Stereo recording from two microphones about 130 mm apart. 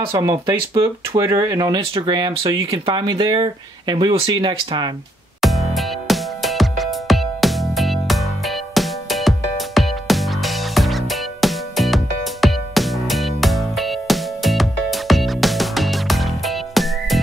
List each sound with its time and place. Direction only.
0.5 s speech: 30° right (ahead or behind)
1.8 s speech: 40° right (ahead or behind)
5.4 s music: centre (ahead or behind)